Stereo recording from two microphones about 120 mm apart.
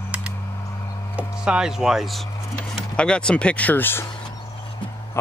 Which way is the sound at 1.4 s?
5° right (ahead or behind).